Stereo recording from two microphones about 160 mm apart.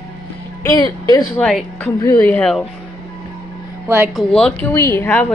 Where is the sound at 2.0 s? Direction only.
15° left (ahead or behind).